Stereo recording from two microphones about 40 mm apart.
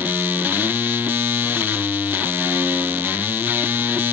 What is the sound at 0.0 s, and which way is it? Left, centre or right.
Music, right.